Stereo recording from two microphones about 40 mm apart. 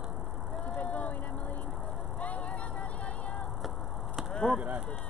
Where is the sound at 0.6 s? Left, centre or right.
Left.